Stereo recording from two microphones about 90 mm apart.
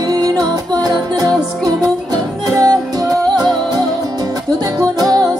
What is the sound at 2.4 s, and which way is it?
Music, 45° right (ahead or behind).